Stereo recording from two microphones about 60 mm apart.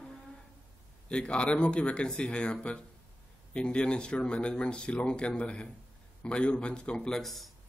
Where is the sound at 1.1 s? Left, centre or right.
Centre.